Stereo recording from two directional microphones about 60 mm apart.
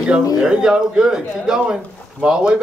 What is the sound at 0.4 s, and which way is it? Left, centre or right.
Speech, centre.